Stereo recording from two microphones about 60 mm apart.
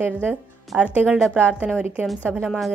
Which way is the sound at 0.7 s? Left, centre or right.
Centre.